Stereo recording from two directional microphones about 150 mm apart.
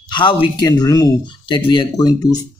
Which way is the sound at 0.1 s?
35° left (ahead or behind).